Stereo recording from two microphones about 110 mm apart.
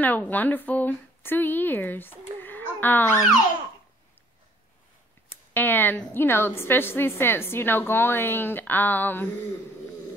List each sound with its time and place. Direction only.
0.0 s speech: 15° left (ahead or behind)
5.5 s a woman's voice: 15° left (ahead or behind)